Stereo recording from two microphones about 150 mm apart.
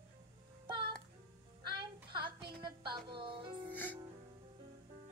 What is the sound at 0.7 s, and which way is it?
Music, 30° right (ahead or behind).